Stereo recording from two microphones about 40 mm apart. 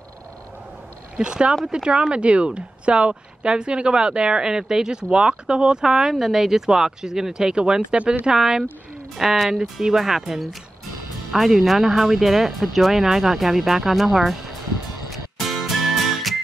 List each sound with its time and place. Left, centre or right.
1.1 s speech: right
6.1 s speech: centre
9.1 s speech: centre
15.0 s music: centre